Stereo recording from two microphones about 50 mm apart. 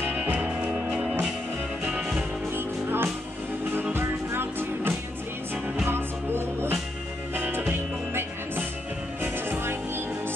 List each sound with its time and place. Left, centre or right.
0.0 s music: right
0.4 s music: centre
2.5 s music: right
7.3 s music: right
8.1 s music: right